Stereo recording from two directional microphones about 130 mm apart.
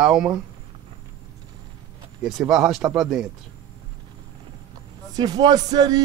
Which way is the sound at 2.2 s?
Centre (ahead or behind).